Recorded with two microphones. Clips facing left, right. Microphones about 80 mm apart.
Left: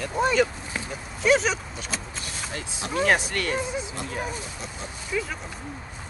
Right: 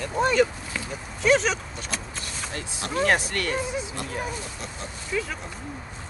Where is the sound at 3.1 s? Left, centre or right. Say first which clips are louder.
Even; centre.